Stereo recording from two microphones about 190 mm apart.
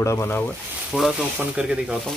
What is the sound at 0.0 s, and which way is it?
Speech, 15° left (ahead or behind).